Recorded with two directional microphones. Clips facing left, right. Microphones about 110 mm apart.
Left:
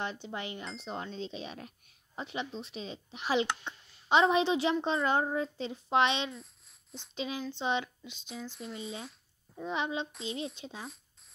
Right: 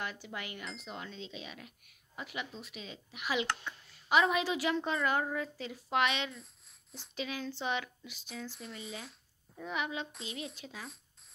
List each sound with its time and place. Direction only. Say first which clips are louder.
0.0 s speech: left 4 dB; 25° left (ahead or behind)
6.3 s a sound: left 4 dB; centre (ahead or behind)
7.2 s speech: left 2 dB; 25° left (ahead or behind)
8.5 s speech: left 3 dB; centre (ahead or behind)
9.6 s speech: left 3 dB; 25° left (ahead or behind)